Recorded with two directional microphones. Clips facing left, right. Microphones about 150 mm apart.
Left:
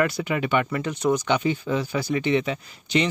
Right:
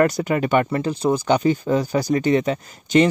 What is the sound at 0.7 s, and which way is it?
Speech, 30° right (ahead or behind).